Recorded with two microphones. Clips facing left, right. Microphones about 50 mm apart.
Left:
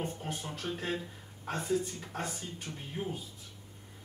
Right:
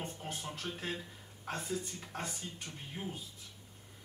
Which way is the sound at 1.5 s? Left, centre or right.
Centre.